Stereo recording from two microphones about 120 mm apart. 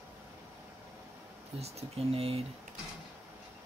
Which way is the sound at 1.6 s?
55° right (ahead or behind).